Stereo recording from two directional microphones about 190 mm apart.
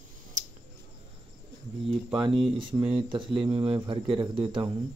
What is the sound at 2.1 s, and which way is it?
Speech, 25° right (ahead or behind).